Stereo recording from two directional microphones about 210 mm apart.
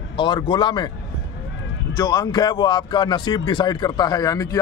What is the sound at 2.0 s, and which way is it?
A man's voice, 20° left (ahead or behind).